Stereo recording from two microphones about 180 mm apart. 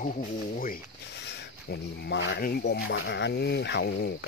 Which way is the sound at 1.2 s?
65° left (ahead or behind).